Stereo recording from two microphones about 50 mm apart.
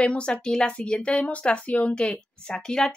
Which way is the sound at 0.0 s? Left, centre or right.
Left.